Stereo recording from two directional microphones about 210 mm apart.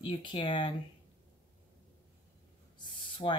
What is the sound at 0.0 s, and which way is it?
Speech, 25° left (ahead or behind).